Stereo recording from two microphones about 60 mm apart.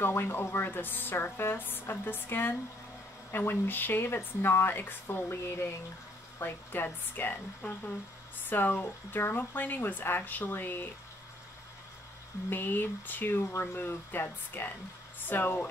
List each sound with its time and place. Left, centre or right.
0.0 s a woman's voice: left
8.5 s a woman's voice: left
12.4 s a woman's voice: left